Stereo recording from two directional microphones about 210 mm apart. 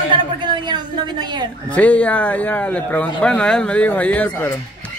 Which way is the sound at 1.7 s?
5° left (ahead or behind).